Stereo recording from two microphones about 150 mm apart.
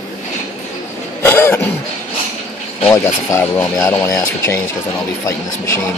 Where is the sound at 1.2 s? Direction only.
15° left (ahead or behind).